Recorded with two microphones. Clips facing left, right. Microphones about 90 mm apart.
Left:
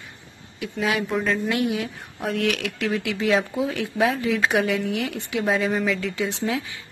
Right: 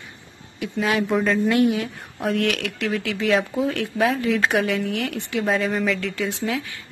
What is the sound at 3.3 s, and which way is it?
Speech, 5° right (ahead or behind).